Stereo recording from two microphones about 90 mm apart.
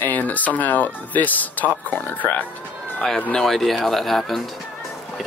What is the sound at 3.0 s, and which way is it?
Speech, 5° left (ahead or behind).